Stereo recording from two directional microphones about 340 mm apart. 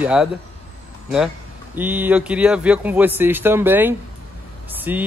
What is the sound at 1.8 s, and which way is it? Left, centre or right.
A man's voice, centre.